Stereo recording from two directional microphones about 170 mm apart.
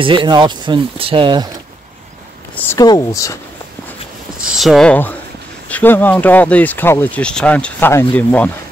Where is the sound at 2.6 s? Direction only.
20° left (ahead or behind).